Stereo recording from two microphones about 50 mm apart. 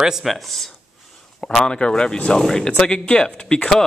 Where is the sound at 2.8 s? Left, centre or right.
Left.